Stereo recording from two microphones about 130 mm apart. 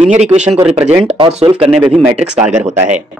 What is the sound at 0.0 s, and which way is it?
Speech, 60° right (ahead or behind).